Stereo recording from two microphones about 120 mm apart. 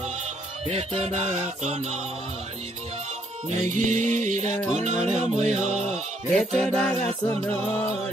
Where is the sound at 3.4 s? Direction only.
80° right.